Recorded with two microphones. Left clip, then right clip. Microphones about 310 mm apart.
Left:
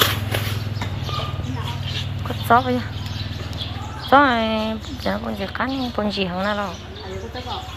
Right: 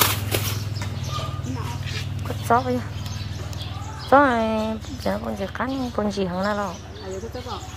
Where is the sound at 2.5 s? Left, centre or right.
Centre.